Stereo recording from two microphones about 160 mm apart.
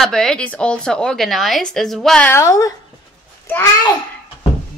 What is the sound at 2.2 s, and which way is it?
Speech, 15° left (ahead or behind).